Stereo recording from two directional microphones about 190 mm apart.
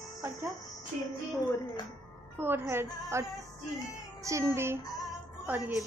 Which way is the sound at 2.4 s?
10° right (ahead or behind).